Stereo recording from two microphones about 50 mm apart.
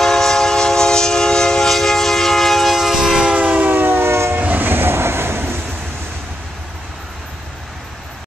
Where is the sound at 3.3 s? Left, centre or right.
Right.